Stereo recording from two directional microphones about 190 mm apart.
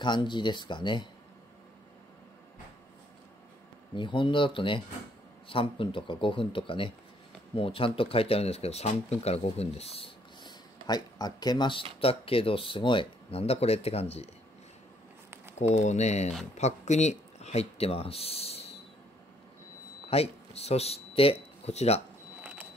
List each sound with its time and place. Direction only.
0.0 s speech: 25° left (ahead or behind)
3.9 s speech: 25° left (ahead or behind)
15.7 s speech: 40° left (ahead or behind)
20.1 s speech: 30° left (ahead or behind)
22.4 s a sound: 10° right (ahead or behind)